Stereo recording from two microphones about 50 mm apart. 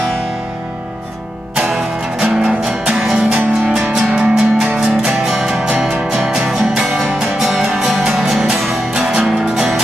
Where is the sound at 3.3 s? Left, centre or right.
Right.